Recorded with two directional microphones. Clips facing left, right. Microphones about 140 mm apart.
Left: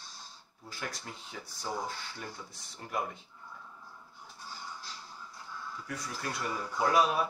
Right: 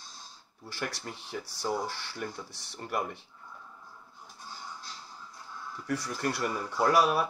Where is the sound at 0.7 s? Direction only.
75° right (ahead or behind).